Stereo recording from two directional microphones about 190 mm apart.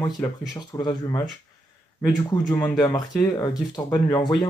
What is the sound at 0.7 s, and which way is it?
Speech, 20° left (ahead or behind).